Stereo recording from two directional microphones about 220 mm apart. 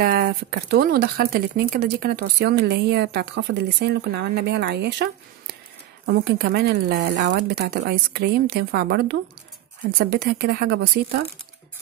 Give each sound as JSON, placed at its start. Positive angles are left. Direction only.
{"t": 0.0, "sound": "speech", "side_deg": -45}